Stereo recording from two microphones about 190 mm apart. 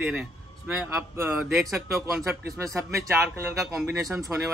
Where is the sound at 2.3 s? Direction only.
15° right (ahead or behind).